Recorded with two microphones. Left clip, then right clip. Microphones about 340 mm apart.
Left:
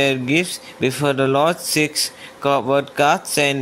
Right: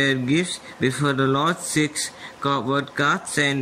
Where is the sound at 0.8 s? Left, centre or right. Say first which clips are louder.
Left 3 dB; centre.